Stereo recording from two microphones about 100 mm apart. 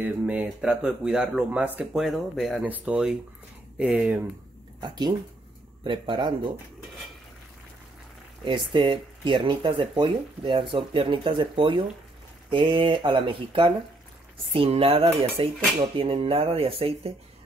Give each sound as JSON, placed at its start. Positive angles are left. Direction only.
{"t": 0.0, "sound": "speech", "side_deg": -15}
{"t": 2.0, "sound": "speech", "side_deg": 0}
{"t": 2.6, "sound": "speech", "side_deg": -15}
{"t": 4.7, "sound": "speech", "side_deg": -45}
{"t": 8.5, "sound": "speech", "side_deg": -55}
{"t": 14.5, "sound": "speech", "side_deg": -70}